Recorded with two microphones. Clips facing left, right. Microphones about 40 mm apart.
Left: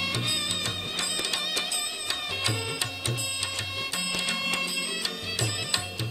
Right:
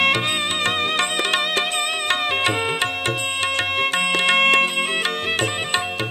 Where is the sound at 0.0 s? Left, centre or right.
Right.